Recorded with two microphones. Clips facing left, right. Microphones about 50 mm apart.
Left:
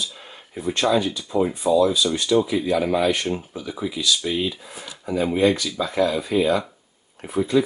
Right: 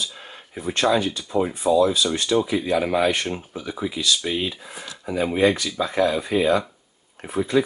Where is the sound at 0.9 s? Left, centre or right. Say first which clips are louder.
Even; centre.